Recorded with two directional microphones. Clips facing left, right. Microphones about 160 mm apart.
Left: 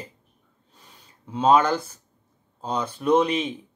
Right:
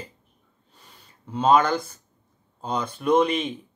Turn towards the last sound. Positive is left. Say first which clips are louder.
# even
turn(degrees=5)  # may be behind; listen again after turning